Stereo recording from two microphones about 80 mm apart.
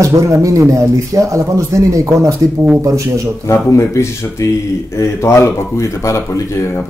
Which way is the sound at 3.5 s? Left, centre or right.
Left.